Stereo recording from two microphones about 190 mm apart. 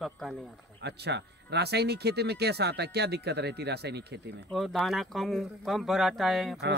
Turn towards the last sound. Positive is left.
turn(degrees=0)  # may be behind; listen again after turning